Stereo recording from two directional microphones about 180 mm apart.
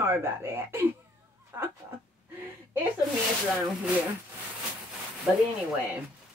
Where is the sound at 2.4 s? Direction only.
10° right (ahead or behind).